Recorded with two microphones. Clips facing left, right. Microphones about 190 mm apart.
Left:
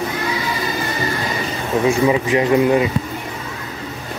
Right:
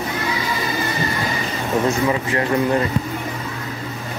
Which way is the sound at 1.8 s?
15° left (ahead or behind).